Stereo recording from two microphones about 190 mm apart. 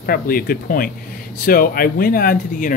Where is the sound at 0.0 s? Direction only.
50° left (ahead or behind).